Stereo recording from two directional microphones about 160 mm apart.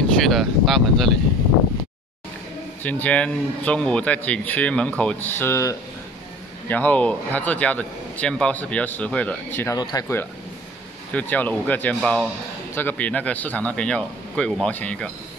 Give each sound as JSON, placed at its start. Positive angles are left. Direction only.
{"t": 0.2, "sound": "speech", "side_deg": 0}
{"t": 2.8, "sound": "a man's voice", "side_deg": 10}